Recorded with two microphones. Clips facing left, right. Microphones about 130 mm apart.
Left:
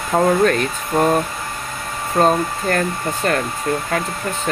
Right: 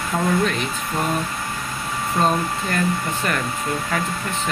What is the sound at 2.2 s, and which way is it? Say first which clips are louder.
Speech: left 5 dB; 45° left (ahead or behind).